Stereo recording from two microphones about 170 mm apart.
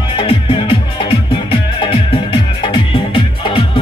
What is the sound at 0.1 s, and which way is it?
Music, 35° left (ahead or behind).